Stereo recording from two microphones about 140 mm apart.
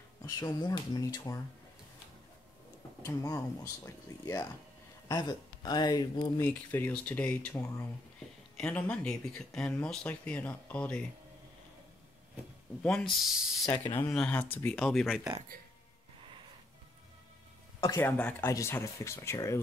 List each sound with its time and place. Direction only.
0.2 s speech: 25° left (ahead or behind)
3.0 s speech: 20° left (ahead or behind)
6.4 s speech: 15° left (ahead or behind)
12.8 s speech: 5° left (ahead or behind)
13.7 s speech: 35° left (ahead or behind)
14.1 s speech: 10° left (ahead or behind)
17.7 s speech: 20° left (ahead or behind)